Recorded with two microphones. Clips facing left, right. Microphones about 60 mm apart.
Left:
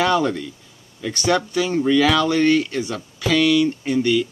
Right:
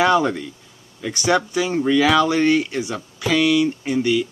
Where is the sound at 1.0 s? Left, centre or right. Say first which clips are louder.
Right 1 dB; centre.